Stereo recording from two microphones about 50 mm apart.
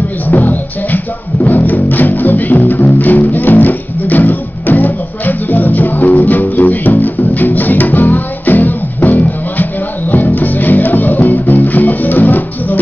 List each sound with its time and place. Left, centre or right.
0.3 s music: left